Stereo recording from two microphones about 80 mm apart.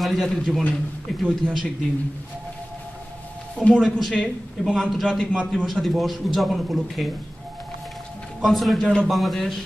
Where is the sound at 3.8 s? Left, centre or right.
Centre.